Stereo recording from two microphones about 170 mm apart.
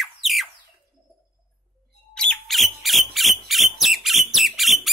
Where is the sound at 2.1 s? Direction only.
5° left (ahead or behind).